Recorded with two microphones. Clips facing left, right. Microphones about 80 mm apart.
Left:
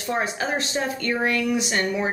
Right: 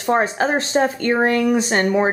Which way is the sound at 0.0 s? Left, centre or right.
Right.